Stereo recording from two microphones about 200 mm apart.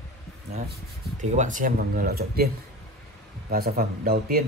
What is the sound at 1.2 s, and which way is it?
A man's voice, 35° right (ahead or behind).